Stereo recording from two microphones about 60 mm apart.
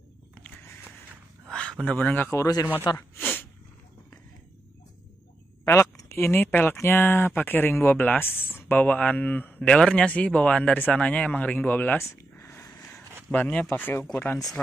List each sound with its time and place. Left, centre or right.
1.5 s a sound: centre
2.0 s speech: left
2.3 s speech: left
2.7 s gasp: left
5.7 s speech: left
9.6 s speech: centre; by 12.0 s left
12.0 s a sound: left
13.3 s speech: left
13.7 s speech: left